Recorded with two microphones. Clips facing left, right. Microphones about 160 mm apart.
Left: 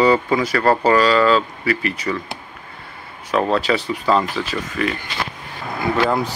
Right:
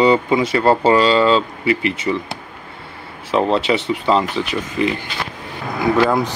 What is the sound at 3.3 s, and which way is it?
Speech, 25° right (ahead or behind).